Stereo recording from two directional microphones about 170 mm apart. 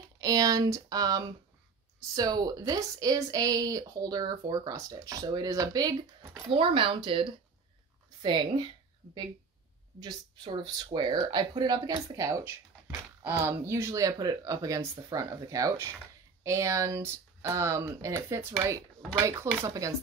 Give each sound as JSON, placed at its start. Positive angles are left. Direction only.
{"t": 0.2, "sound": "speech", "side_deg": -20}
{"t": 9.9, "sound": "speech", "side_deg": -25}